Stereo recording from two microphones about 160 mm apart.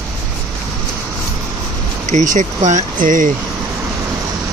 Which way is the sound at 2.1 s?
50° right (ahead or behind).